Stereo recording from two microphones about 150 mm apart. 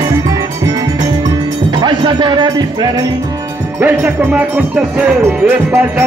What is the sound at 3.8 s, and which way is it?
Music, 10° right (ahead or behind).